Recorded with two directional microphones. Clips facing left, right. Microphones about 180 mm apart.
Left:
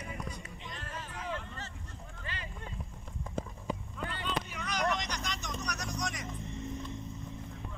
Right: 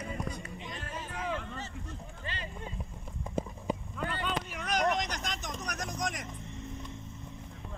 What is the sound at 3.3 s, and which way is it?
Clip-clop, 20° right (ahead or behind).